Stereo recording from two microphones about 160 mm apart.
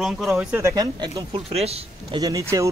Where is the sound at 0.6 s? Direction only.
20° right (ahead or behind).